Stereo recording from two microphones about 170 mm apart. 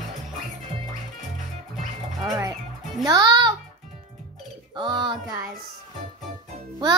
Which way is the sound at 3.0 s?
25° right (ahead or behind).